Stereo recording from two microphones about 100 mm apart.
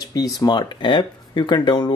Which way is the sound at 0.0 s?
40° left (ahead or behind).